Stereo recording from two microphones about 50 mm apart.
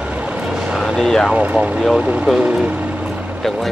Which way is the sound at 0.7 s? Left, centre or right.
Centre.